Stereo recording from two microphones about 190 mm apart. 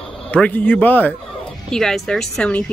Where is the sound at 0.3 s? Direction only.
10° left (ahead or behind).